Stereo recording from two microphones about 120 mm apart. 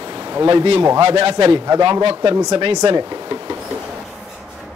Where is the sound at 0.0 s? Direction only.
50° right (ahead or behind).